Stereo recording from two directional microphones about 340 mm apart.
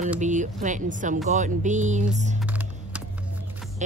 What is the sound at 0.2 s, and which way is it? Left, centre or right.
Speech, right.